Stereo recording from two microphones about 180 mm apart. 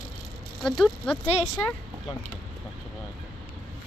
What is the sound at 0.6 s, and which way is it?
Speech, centre (ahead or behind).